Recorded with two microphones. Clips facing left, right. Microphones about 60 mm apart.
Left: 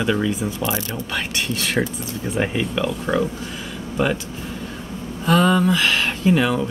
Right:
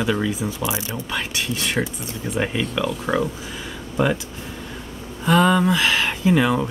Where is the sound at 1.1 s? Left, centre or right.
Centre.